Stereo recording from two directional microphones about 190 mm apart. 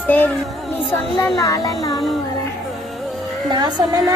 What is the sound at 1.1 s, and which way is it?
Speech, 15° left (ahead or behind).